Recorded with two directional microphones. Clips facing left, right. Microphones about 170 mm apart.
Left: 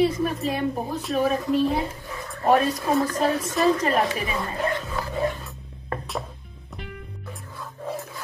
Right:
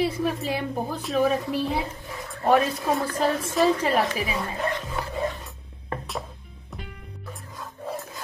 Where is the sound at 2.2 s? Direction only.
Centre (ahead or behind).